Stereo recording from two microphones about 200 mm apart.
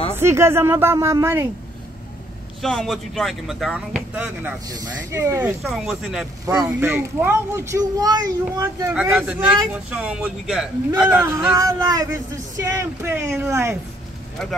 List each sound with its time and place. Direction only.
0.1 s a child's voice: 10° right (ahead or behind)
2.6 s a child's voice: centre (ahead or behind); by 5.5 s 15° right (ahead or behind)
5.6 s a child's voice: centre (ahead or behind); by 8.9 s 20° right (ahead or behind)
8.9 s a child's voice: 10° right (ahead or behind)